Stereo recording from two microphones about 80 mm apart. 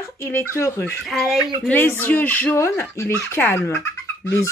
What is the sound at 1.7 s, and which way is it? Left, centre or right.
Speech, left.